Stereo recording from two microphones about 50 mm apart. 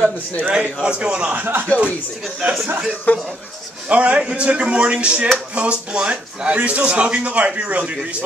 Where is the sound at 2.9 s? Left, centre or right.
Left.